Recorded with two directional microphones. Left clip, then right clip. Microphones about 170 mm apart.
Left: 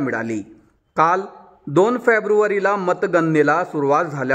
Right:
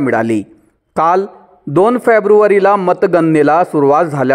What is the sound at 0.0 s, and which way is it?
A man's voice, 30° right (ahead or behind).